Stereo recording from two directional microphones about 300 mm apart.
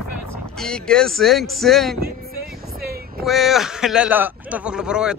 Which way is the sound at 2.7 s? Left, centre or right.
Right.